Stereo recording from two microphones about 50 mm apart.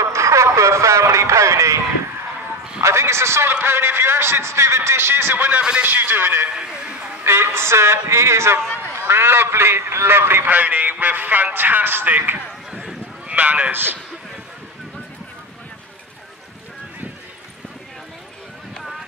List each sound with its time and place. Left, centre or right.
0.0 s speech: right
2.8 s speech: right
3.5 s a man's voice: right
5.6 s a man's voice: centre
5.9 s a man's voice: right
6.5 s a sound: centre
7.2 s a man's voice: right
10.5 s a man's voice: right
13.3 s a man's voice: right
18.8 s a sound: centre